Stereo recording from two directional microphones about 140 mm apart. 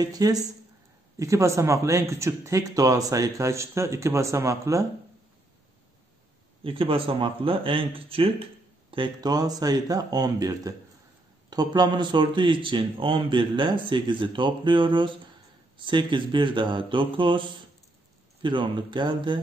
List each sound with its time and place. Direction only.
0.0 s speech: 25° right (ahead or behind)
6.6 s speech: 40° right (ahead or behind)
18.4 s speech: 35° right (ahead or behind)